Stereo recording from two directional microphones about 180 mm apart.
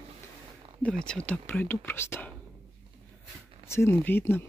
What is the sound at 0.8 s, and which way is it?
Speech, 5° left (ahead or behind).